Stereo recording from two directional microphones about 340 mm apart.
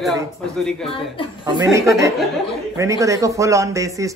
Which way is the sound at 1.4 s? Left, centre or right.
Centre.